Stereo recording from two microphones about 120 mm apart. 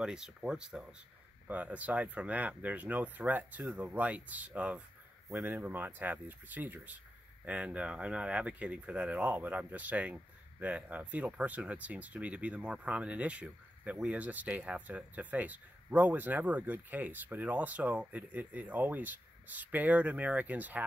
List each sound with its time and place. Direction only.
0.0 s speech: 5° right (ahead or behind)